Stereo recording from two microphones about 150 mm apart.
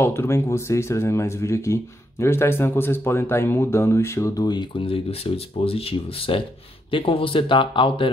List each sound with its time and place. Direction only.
0.0 s speech: 15° left (ahead or behind); by 8.1 s 35° left (ahead or behind)